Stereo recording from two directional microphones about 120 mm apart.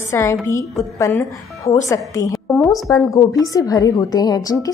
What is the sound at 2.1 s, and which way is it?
A woman's voice, 25° left (ahead or behind).